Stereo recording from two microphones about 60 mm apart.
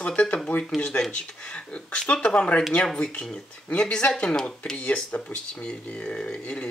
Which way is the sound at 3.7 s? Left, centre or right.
Centre.